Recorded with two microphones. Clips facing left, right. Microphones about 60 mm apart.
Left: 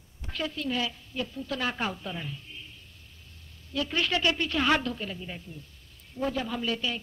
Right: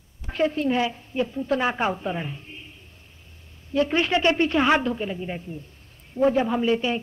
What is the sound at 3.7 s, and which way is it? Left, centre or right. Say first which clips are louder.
A woman's voice: right 7 dB; right.